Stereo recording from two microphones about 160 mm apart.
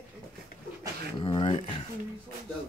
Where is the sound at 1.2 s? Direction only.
35° left (ahead or behind).